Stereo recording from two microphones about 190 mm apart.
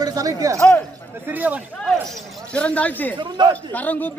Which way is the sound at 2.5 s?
5° left (ahead or behind).